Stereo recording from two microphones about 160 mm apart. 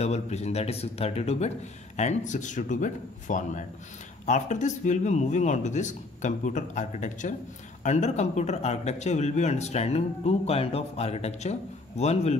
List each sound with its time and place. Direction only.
0.0 s speech: 45° left (ahead or behind)